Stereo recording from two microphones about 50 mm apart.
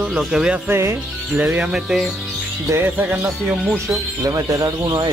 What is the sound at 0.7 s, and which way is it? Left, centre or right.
Speech, right.